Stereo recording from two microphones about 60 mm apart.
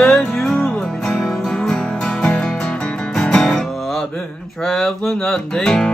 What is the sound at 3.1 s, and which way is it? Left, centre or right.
Music, centre.